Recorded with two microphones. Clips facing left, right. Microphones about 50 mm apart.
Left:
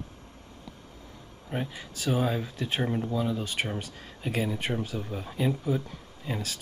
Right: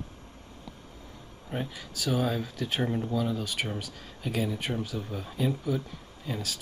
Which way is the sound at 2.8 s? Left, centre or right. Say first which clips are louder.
Even; centre.